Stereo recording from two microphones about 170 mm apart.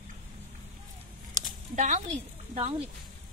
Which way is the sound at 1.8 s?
45° right (ahead or behind).